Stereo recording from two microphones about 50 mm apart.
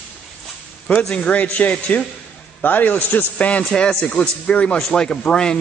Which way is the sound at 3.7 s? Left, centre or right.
Centre.